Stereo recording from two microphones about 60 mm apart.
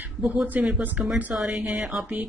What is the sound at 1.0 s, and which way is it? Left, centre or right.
Speech, right.